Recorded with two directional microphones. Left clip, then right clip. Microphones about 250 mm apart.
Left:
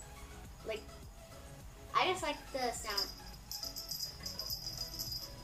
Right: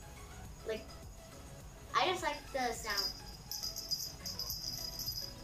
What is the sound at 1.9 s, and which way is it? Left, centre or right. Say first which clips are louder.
A woman's voice: even; centre.